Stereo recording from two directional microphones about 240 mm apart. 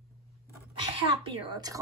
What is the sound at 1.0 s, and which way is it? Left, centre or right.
Speech, right.